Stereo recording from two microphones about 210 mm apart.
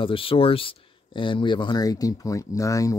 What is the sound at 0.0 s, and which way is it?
Speech, 25° left (ahead or behind).